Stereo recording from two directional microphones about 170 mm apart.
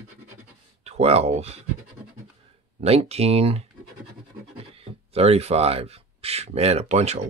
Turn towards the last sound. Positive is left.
turn(degrees=-40)  # may be behind; listen again after turning